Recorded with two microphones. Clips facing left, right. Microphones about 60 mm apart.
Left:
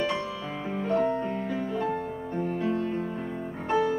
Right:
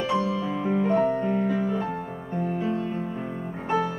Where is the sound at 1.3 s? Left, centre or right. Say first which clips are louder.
Right 6 dB; centre.